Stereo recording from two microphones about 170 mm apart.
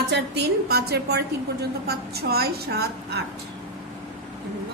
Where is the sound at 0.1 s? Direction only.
70° right (ahead or behind).